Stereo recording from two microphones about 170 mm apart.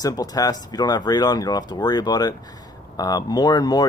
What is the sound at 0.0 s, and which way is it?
Speech, 20° left (ahead or behind).